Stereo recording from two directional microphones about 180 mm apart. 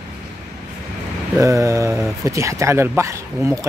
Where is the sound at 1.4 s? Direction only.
15° right (ahead or behind).